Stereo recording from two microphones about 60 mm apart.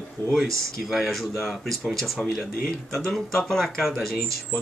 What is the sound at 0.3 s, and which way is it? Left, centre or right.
Speech, centre.